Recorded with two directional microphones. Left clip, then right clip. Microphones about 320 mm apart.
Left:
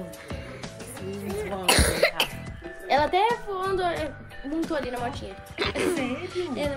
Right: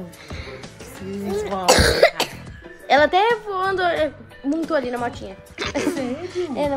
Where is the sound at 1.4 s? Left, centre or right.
Right.